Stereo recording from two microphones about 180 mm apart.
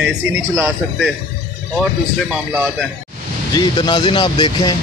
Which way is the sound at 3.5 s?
25° left (ahead or behind).